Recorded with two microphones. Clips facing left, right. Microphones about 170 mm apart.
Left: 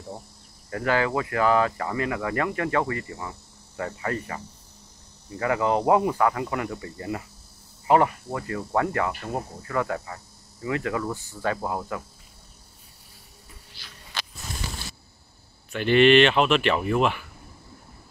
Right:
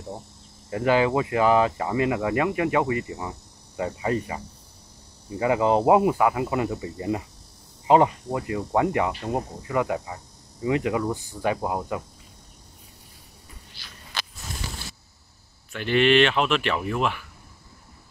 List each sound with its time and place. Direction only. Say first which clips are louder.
0.7 s speech: right 3 dB; 20° right (ahead or behind)
15.7 s speech: left 3 dB; centre (ahead or behind)